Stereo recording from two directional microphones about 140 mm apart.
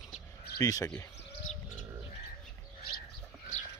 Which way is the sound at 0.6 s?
25° left (ahead or behind).